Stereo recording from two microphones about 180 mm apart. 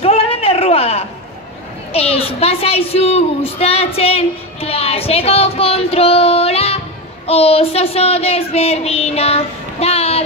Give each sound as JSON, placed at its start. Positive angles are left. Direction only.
{"t": 0.0, "sound": "a sound", "side_deg": 35}
{"t": 1.9, "sound": "a child's voice", "side_deg": 35}
{"t": 7.2, "sound": "child singing", "side_deg": 35}